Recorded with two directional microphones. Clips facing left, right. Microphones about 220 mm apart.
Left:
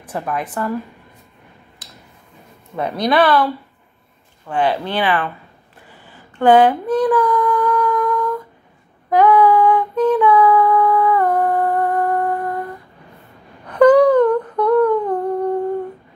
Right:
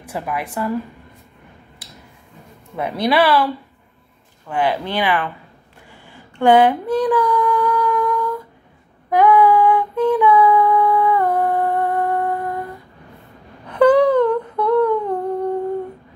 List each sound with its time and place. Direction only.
0.0 s a woman's voice: 10° right (ahead or behind)
1.8 s a sound: 10° right (ahead or behind)
2.8 s a woman's voice: 10° right (ahead or behind)
4.5 s a woman's voice: 10° right (ahead or behind)
6.0 s a sound: 10° right (ahead or behind)
9.2 s female singing: 10° right (ahead or behind)
10.9 s humming: 20° right (ahead or behind)
11.1 s humming: 10° right (ahead or behind)